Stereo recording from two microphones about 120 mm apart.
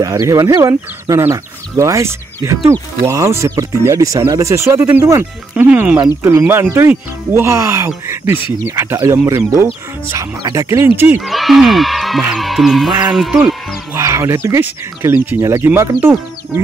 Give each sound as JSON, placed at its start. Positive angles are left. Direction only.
{"t": 0.0, "sound": "speech", "side_deg": -30}
{"t": 11.1, "sound": "speech", "side_deg": 0}
{"t": 13.9, "sound": "speech", "side_deg": -25}